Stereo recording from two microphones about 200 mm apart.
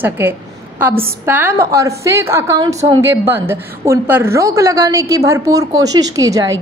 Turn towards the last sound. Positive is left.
turn(degrees=-15)  # may be behind; listen again after turning